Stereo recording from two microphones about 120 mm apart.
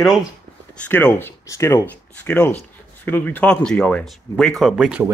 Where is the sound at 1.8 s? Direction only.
15° left (ahead or behind).